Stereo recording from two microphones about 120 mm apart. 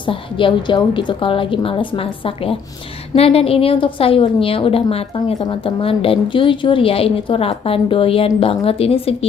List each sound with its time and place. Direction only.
0.0 s a woman's voice: 45° left (ahead or behind)